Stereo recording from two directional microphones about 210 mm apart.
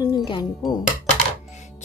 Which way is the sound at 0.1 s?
20° left (ahead or behind).